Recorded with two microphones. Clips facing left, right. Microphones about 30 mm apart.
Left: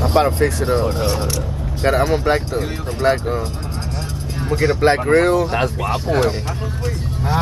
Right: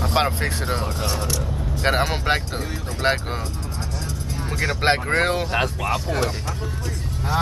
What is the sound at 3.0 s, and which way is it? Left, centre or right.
Speech, right.